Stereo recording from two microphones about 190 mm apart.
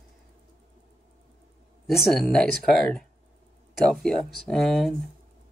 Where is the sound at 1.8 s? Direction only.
Centre (ahead or behind).